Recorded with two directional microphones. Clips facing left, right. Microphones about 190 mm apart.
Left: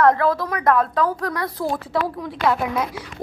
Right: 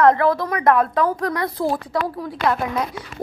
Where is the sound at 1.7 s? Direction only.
Centre (ahead or behind).